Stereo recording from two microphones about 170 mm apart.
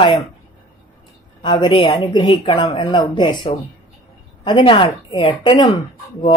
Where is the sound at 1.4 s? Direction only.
30° left (ahead or behind).